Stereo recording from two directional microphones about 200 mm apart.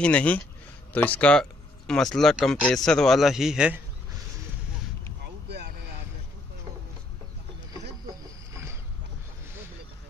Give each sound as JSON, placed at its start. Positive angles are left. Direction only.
{"t": 0.0, "sound": "speech", "side_deg": 5}
{"t": 5.5, "sound": "vehicle", "side_deg": -60}
{"t": 8.1, "sound": "boat", "side_deg": -15}